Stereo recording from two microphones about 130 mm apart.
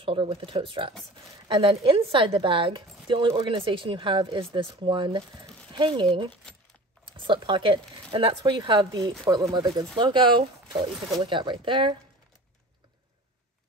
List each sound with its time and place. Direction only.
0.0 s a woman's voice: 45° right (ahead or behind)
8.5 s a woman's voice: 35° right (ahead or behind)